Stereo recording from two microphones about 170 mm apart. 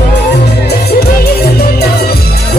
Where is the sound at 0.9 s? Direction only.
70° left (ahead or behind).